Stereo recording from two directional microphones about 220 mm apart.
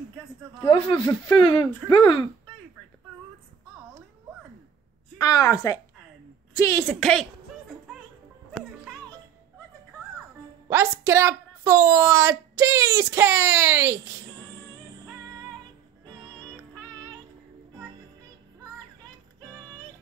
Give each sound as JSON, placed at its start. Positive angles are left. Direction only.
{"t": 0.7, "sound": "speech", "side_deg": 20}
{"t": 5.2, "sound": "a woman's voice", "side_deg": 15}
{"t": 6.9, "sound": "a woman's voice", "side_deg": 0}
{"t": 10.7, "sound": "a woman's voice", "side_deg": -10}